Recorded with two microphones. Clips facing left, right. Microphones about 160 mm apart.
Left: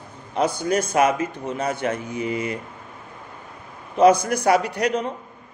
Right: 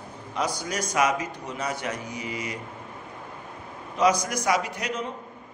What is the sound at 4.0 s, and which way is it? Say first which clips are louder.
Speech: left 7 dB; 55° left (ahead or behind).